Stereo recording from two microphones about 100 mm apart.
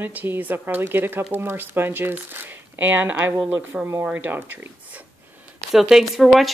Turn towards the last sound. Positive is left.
turn(degrees=0)  # may be behind; listen again after turning